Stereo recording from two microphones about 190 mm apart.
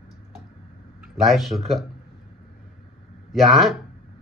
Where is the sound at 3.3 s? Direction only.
Centre (ahead or behind).